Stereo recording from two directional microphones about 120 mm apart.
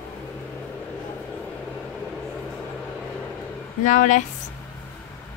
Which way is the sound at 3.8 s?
90° left.